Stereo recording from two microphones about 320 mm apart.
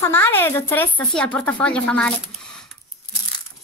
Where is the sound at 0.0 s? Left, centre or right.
Centre.